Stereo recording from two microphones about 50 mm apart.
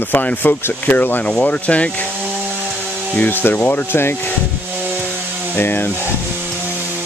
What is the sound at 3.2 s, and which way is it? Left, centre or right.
Speech, left.